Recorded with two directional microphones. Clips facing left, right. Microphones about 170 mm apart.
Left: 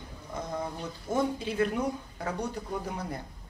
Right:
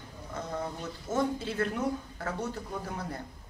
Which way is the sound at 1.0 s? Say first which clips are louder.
Left 1 dB; 15° left (ahead or behind).